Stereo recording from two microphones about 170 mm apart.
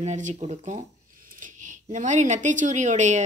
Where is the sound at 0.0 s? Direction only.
45° right (ahead or behind).